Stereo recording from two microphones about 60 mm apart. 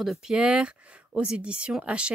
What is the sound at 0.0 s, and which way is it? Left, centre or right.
Speech, centre.